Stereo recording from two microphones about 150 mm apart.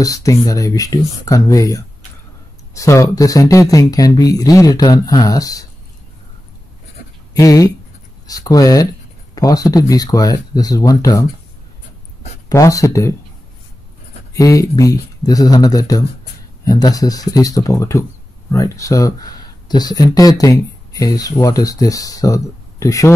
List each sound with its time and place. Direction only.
0.0 s speech: 20° left (ahead or behind)
7.3 s speech: 25° left (ahead or behind)
12.4 s speech: 20° left (ahead or behind)
14.3 s speech: 20° left (ahead or behind)